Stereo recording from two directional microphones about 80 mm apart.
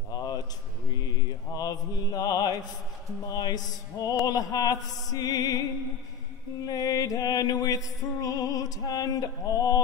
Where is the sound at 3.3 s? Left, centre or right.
Left.